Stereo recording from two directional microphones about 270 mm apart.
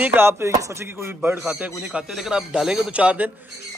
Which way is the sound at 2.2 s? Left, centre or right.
Centre.